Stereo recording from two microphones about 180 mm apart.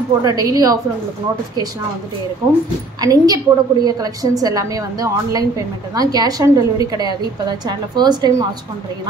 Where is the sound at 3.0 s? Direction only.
20° right (ahead or behind).